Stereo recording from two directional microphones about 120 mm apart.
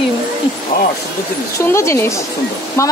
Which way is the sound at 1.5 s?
25° left (ahead or behind).